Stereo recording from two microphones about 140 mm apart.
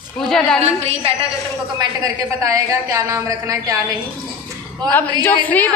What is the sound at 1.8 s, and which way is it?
A woman's voice, 25° right (ahead or behind).